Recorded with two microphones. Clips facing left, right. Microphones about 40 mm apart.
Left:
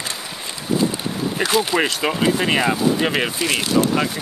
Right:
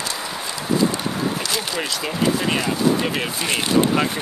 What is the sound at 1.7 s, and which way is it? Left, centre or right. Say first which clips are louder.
Speech: left 4 dB; left.